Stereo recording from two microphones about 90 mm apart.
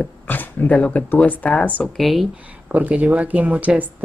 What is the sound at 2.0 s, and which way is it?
Speech, centre (ahead or behind).